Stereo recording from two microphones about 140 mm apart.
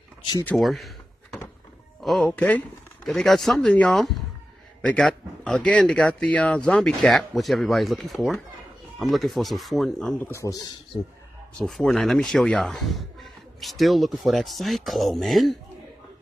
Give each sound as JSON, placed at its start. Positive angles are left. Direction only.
{"t": 0.2, "sound": "speech", "side_deg": 30}
{"t": 0.6, "sound": "a sound", "side_deg": 0}
{"t": 2.0, "sound": "speech", "side_deg": 0}
{"t": 10.2, "sound": "speech", "side_deg": 20}
{"t": 11.5, "sound": "speech", "side_deg": 5}